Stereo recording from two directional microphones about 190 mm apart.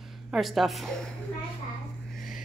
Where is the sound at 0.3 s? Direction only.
Centre (ahead or behind).